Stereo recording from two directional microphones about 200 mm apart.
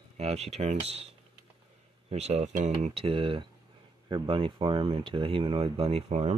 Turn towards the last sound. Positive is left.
turn(degrees=-30)  # may be behind; listen again after turning